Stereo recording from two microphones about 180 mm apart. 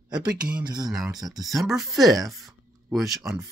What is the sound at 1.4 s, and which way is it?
Speech, centre (ahead or behind).